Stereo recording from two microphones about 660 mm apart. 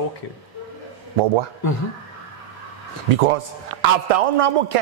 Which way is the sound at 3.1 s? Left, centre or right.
Right.